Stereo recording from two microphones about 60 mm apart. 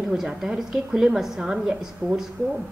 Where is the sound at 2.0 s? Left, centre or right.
Right.